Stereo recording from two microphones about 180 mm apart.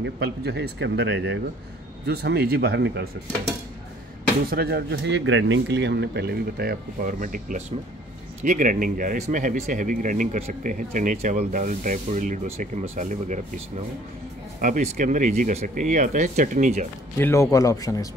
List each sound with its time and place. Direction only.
0.0 s speech: 65° right (ahead or behind)
2.0 s speech: 65° right (ahead or behind)
4.5 s speech: 60° right (ahead or behind); by 13.4 s 45° right (ahead or behind)
14.6 s speech: 45° right (ahead or behind)
17.2 s speech: 15° left (ahead or behind)